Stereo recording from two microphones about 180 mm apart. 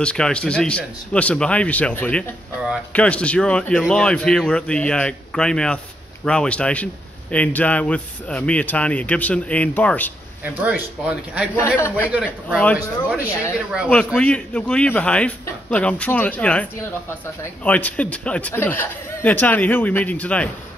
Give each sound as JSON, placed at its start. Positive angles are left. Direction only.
{"t": 0.0, "sound": "a man's voice", "side_deg": 5}
{"t": 10.4, "sound": "speech", "side_deg": -10}
{"t": 13.8, "sound": "a man's voice", "side_deg": 5}